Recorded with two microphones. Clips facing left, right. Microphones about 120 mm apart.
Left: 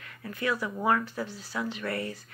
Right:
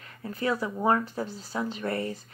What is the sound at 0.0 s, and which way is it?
Speech, 30° right (ahead or behind).